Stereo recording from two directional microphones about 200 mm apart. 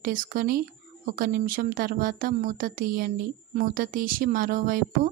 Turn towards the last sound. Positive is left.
turn(degrees=-45)  # may be behind; listen again after turning